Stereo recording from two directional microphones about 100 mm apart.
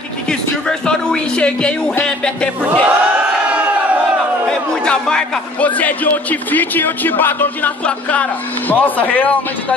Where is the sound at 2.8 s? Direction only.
15° right (ahead or behind).